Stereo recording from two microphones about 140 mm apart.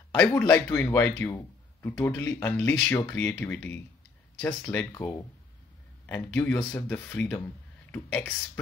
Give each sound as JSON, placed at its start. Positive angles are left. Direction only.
{"t": 0.4, "sound": "speech", "side_deg": 10}